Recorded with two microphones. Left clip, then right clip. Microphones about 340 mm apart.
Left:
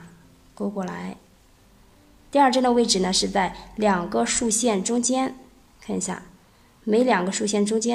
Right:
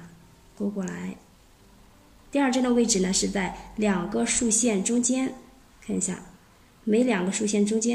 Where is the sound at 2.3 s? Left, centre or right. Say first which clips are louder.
Left 6 dB; centre.